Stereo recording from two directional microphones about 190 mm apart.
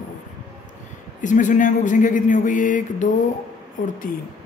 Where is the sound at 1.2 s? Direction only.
40° left (ahead or behind).